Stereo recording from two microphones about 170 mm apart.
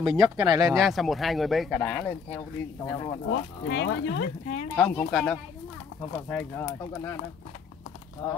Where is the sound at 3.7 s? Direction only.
90° left.